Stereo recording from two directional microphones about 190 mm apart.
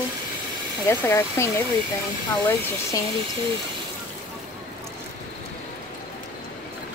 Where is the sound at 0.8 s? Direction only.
15° left (ahead or behind).